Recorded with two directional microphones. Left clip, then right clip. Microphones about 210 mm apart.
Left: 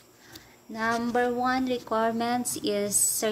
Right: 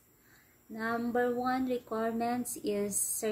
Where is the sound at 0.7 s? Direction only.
10° right (ahead or behind).